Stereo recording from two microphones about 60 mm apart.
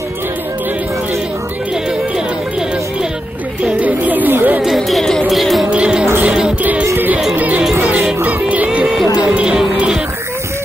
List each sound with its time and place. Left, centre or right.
3.8 s chatter: right
4.7 s music: centre
5.7 s music: centre
6.6 s music: right
8.6 s music: centre